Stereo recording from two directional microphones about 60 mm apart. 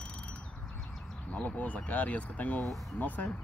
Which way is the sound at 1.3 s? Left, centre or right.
Left.